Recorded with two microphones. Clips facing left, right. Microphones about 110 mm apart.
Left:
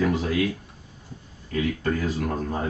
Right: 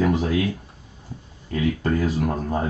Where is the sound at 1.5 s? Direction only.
30° right (ahead or behind).